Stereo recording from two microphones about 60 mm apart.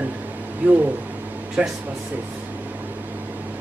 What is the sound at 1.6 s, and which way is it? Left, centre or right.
Speech, right.